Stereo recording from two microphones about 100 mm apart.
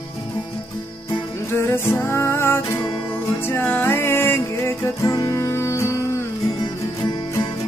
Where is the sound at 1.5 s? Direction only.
25° left (ahead or behind).